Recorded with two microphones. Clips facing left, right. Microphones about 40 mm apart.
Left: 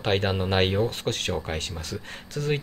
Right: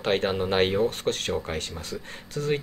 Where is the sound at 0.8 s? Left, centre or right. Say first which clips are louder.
Right 1 dB; left.